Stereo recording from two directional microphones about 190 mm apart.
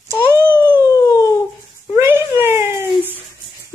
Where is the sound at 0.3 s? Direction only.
10° right (ahead or behind).